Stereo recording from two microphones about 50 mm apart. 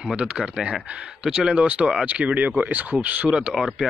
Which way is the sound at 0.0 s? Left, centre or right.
Right.